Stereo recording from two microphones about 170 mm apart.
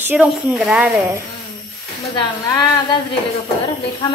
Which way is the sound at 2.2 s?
25° left (ahead or behind).